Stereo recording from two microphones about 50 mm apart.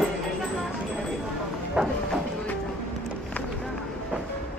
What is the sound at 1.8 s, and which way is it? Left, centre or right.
Speech, right.